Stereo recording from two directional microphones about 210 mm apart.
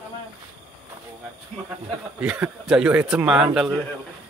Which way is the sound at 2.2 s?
5° right (ahead or behind).